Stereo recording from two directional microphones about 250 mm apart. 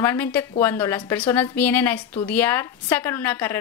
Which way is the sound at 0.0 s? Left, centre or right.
Centre.